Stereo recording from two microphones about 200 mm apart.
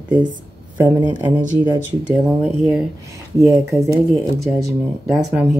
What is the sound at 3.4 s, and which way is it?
Speech, 15° right (ahead or behind).